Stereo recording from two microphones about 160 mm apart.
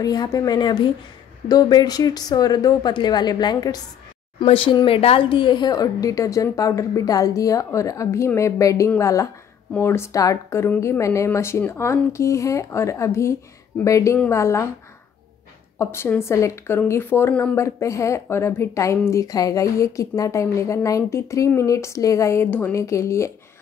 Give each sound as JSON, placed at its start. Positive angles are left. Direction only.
{"t": 0.0, "sound": "a woman's voice", "side_deg": 25}
{"t": 15.8, "sound": "a woman's voice", "side_deg": 15}